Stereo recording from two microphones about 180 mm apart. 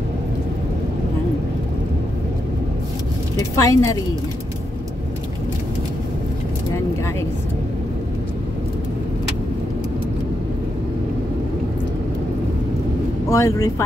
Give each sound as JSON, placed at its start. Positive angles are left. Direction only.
{"t": 3.3, "sound": "a woman's voice", "side_deg": 20}
{"t": 13.3, "sound": "speech", "side_deg": 20}